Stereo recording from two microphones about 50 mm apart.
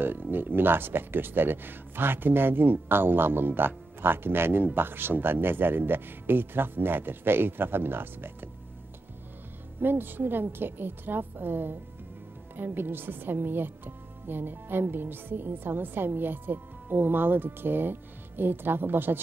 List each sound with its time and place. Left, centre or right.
0.0 s a woman's voice: right
9.8 s a woman's voice: right